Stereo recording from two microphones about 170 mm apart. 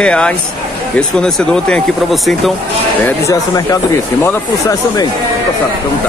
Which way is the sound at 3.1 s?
20° left (ahead or behind).